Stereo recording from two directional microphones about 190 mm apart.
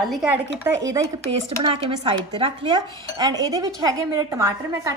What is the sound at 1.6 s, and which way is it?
Speech, 25° right (ahead or behind).